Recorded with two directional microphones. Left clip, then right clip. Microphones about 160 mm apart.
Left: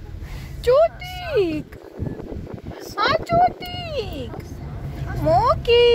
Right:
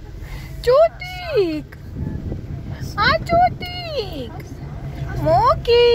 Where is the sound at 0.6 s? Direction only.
10° left (ahead or behind).